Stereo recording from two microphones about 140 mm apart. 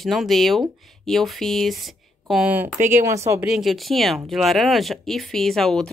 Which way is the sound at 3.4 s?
Centre (ahead or behind).